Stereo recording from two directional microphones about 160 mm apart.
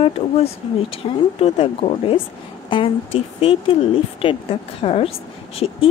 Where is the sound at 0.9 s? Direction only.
35° left (ahead or behind).